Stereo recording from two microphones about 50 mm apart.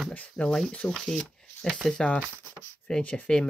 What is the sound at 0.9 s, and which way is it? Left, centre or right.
Speech, centre.